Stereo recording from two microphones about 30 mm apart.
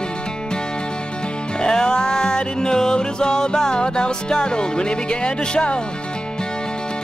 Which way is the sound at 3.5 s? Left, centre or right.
Left.